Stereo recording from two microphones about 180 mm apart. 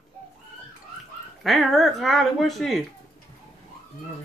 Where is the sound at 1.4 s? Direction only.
Centre (ahead or behind).